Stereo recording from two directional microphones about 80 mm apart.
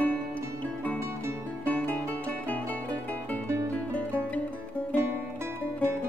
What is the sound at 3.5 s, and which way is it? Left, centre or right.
Music, right.